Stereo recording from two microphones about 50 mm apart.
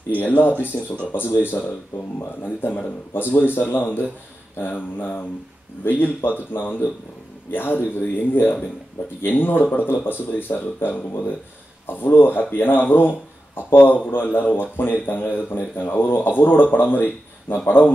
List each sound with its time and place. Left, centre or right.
0.1 s a man's voice: left